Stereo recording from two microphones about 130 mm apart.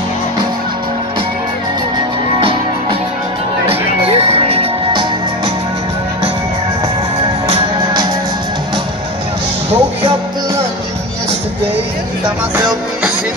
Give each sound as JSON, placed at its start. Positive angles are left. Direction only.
{"t": 4.0, "sound": "music", "side_deg": -50}
{"t": 9.7, "sound": "music", "side_deg": -50}